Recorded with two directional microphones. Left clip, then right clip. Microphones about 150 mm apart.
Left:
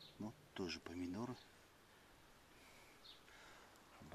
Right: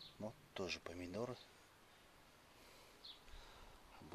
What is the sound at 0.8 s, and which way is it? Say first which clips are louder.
Speech: right 2 dB; 35° right (ahead or behind).